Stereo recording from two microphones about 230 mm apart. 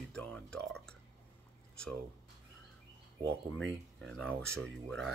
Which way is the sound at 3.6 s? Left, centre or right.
Centre.